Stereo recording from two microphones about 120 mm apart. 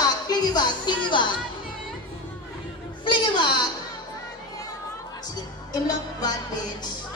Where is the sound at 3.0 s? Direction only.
40° left (ahead or behind).